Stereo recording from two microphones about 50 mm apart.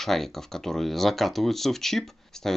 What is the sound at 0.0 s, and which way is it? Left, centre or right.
Speech, centre.